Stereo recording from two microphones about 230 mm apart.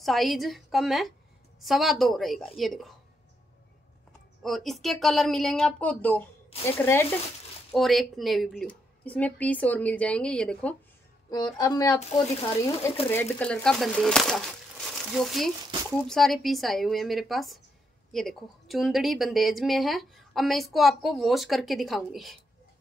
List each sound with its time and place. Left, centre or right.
0.0 s a woman's voice: centre
4.4 s a woman's voice: centre
11.2 s a woman's voice: centre
13.1 s a woman's voice: centre